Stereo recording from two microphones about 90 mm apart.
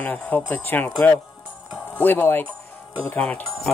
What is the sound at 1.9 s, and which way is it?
Speech, 20° left (ahead or behind).